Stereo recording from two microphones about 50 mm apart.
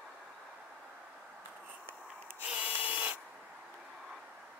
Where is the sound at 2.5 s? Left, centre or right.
Right.